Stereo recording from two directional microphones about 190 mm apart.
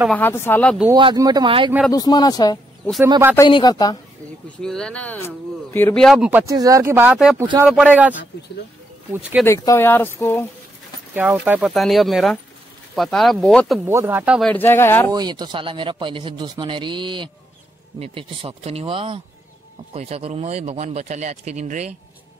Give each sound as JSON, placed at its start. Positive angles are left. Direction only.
{"t": 0.1, "sound": "speech", "side_deg": 10}
{"t": 0.9, "sound": "speech", "side_deg": -20}
{"t": 1.9, "sound": "speech", "side_deg": 20}
{"t": 3.0, "sound": "speech", "side_deg": -15}
{"t": 3.3, "sound": "speech", "side_deg": 20}
{"t": 4.6, "sound": "speech", "side_deg": 5}
{"t": 6.1, "sound": "speech", "side_deg": -10}
{"t": 9.4, "sound": "speech", "side_deg": 10}
{"t": 11.3, "sound": "speech", "side_deg": -5}
{"t": 13.8, "sound": "speech", "side_deg": -10}
{"t": 14.5, "sound": "speech", "side_deg": 10}
{"t": 15.1, "sound": "speech", "side_deg": -25}